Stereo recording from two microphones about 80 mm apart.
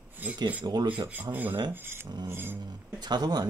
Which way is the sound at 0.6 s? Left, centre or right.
Right.